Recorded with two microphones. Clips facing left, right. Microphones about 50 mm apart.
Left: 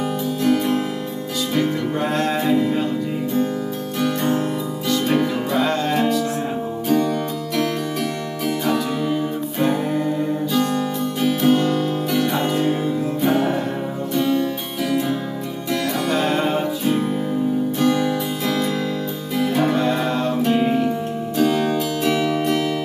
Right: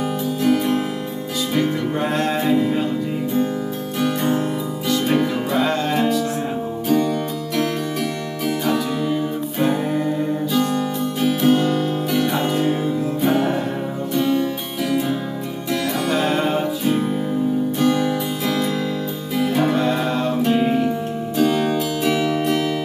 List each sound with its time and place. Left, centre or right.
0.4 s music: centre
4.0 s music: centre
9.6 s music: centre
15.7 s music: centre